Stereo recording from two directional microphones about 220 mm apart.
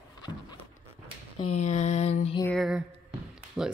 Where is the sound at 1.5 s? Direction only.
30° left (ahead or behind).